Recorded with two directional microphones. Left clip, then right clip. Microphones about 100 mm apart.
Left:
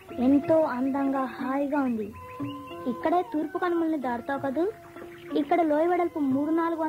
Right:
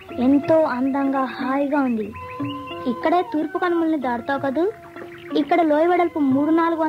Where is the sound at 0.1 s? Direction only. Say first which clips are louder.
Right 5 dB; 35° right (ahead or behind).